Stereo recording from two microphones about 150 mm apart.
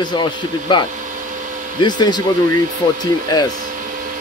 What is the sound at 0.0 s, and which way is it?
Speech, 30° left (ahead or behind).